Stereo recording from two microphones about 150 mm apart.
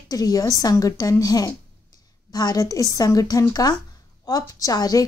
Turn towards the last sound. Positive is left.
turn(degrees=25)  # may be behind; listen again after turning